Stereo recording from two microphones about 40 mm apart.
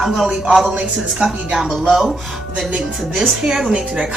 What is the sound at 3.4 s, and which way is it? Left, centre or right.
Speech, centre.